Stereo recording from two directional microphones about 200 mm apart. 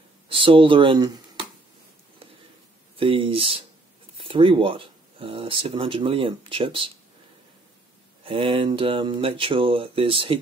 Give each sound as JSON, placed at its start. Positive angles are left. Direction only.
{"t": 0.3, "sound": "speech", "side_deg": -25}
{"t": 3.0, "sound": "speech", "side_deg": -25}
{"t": 8.2, "sound": "speech", "side_deg": -25}